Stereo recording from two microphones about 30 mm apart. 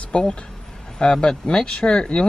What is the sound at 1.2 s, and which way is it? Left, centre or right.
Speech, left.